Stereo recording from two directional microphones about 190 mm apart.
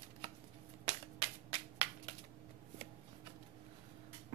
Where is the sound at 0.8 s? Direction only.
30° right (ahead or behind).